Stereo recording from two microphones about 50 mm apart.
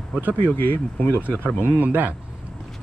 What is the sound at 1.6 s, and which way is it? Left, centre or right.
Speech, right.